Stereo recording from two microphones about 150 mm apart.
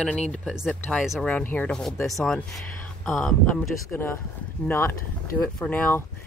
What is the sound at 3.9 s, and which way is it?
Speech, 15° left (ahead or behind).